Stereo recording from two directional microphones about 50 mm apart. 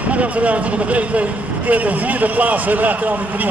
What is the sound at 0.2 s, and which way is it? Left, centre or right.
A man's voice, right.